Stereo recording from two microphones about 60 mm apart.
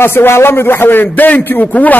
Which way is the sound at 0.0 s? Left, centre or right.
Left.